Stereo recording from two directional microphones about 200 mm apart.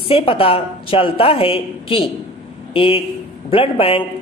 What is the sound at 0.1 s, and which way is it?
A woman's voice, 25° left (ahead or behind).